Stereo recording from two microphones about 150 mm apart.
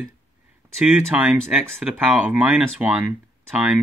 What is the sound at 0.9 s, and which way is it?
Speech, 10° right (ahead or behind).